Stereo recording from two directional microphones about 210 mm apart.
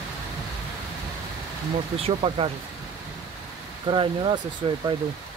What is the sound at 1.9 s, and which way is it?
Speech, 25° right (ahead or behind).